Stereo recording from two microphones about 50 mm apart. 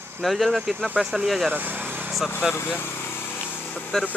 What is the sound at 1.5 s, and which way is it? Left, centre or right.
Vehicle, right.